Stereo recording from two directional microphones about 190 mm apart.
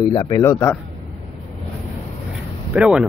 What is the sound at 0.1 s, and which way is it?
Speech, 20° left (ahead or behind).